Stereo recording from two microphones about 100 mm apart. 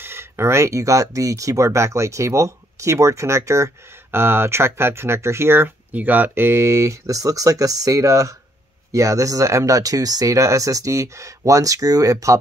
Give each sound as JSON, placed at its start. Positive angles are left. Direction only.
{"t": 0.0, "sound": "speech", "side_deg": -25}